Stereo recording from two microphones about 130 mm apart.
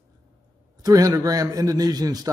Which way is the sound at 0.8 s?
25° right (ahead or behind).